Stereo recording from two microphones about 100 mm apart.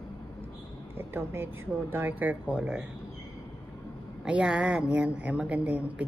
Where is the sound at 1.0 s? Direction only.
20° right (ahead or behind).